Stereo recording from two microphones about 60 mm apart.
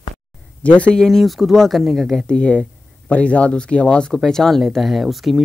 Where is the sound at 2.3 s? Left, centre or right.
Centre.